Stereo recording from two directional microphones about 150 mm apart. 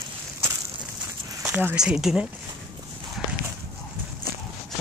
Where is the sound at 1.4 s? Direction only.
5° right (ahead or behind).